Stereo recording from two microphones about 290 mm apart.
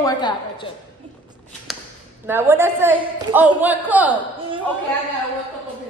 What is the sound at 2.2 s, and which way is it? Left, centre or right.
A man's voice, centre.